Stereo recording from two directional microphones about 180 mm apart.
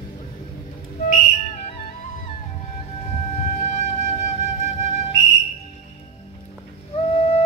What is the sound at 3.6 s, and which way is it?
Music, 40° left (ahead or behind).